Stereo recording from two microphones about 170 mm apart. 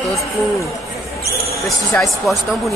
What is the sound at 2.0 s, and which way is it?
Speech, centre (ahead or behind).